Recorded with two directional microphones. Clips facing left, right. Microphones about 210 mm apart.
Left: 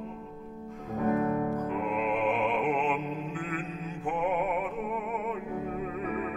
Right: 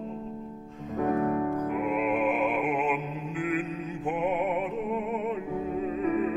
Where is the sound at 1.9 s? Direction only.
5° right (ahead or behind).